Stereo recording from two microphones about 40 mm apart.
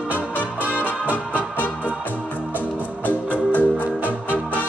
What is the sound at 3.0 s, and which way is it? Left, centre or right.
Music, left.